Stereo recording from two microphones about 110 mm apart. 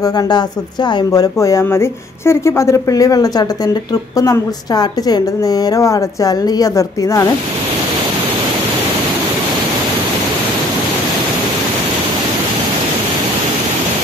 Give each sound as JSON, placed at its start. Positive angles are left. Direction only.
{"t": 1.1, "sound": "a woman's voice", "side_deg": 35}